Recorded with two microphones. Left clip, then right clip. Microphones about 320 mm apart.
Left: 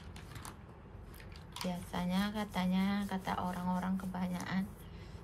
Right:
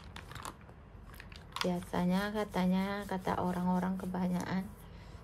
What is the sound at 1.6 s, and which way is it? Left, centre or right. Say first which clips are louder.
Speech: right 5 dB; right.